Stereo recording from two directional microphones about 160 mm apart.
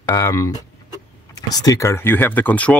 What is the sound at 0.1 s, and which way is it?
Speech, 20° left (ahead or behind).